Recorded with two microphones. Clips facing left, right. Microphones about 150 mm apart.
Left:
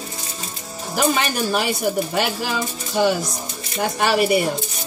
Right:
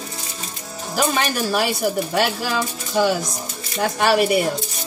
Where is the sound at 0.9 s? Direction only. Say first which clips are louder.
Left 1 dB; centre (ahead or behind).